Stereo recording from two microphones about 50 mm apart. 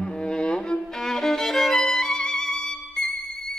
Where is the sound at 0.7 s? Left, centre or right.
Centre.